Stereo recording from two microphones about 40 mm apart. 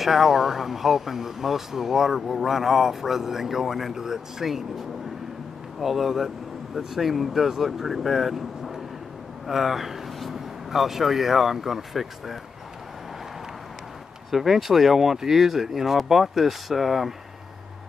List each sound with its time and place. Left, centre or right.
0.0 s speech: centre
14.3 s speech: centre